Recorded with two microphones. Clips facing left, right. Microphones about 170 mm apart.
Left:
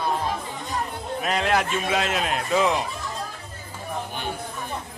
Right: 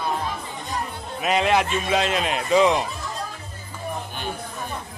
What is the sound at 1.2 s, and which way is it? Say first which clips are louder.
A man's voice: right 3 dB; 5° right (ahead or behind).